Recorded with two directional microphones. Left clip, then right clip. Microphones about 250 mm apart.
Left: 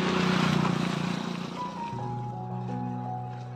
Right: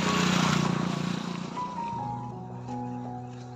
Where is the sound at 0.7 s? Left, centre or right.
Centre; by 1.9 s left.